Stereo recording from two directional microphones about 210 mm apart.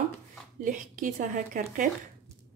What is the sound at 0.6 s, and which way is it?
Speech, 40° right (ahead or behind).